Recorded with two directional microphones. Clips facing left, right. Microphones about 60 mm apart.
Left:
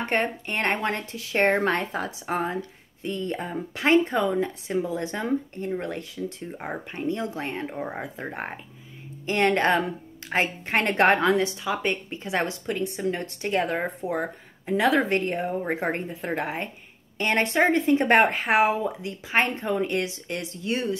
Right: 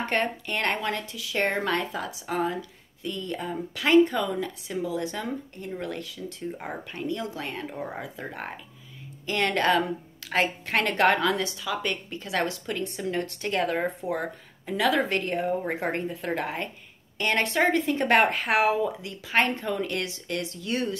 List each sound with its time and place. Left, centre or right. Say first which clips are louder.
0.0 s speech: left 1 dB; left
8.0 s speech: left 3 dB; left